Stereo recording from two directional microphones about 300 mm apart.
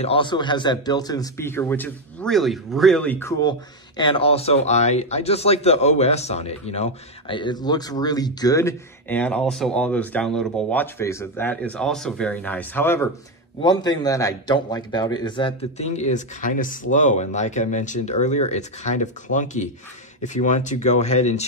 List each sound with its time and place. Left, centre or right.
0.0 s a man's voice: centre